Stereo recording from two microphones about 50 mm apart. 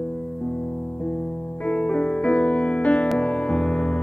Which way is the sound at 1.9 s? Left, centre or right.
Centre.